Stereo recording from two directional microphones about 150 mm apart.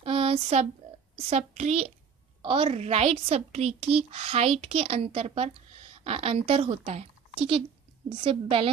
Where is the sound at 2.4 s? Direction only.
35° right (ahead or behind).